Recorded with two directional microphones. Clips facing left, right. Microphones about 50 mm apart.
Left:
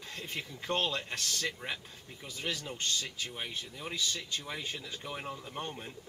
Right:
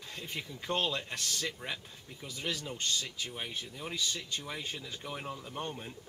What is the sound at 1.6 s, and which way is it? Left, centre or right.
Speech, left.